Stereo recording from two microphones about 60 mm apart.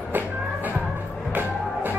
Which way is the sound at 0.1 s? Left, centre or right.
Right.